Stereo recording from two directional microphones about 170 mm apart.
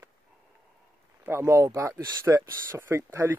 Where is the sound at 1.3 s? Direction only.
15° right (ahead or behind).